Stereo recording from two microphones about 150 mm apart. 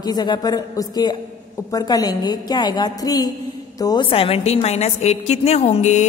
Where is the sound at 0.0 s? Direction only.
25° left (ahead or behind).